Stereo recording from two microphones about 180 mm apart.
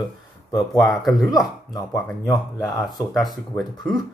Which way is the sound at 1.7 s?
20° left (ahead or behind).